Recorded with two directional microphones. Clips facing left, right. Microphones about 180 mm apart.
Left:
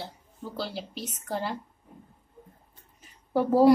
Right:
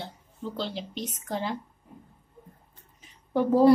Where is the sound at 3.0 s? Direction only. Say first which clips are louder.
Even; 10° left (ahead or behind).